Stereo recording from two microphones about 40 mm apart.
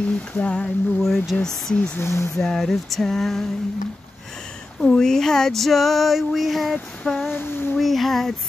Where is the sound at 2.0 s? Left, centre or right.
Left.